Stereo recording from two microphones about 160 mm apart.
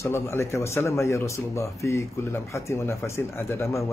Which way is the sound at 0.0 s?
15° left (ahead or behind).